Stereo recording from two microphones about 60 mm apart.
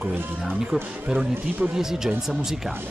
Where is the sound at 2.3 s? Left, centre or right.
Centre.